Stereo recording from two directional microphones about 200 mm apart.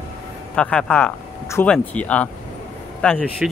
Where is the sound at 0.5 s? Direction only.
5° left (ahead or behind).